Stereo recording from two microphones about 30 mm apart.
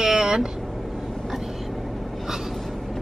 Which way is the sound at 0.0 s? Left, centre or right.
Right.